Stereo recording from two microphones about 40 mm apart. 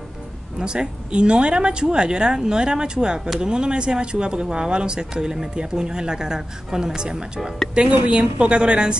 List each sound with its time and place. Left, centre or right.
0.6 s speech: right